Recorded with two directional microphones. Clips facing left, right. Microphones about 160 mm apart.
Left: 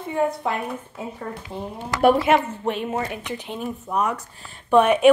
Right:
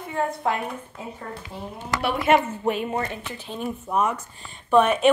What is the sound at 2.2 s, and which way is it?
Speech, 5° right (ahead or behind).